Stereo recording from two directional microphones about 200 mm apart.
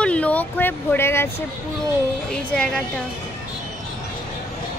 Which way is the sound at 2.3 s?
5° left (ahead or behind).